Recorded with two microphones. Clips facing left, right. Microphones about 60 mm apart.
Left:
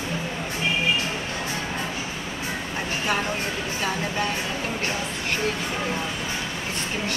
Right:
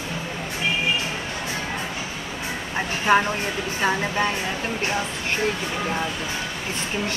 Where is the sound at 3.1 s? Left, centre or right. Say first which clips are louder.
Right 9 dB; right.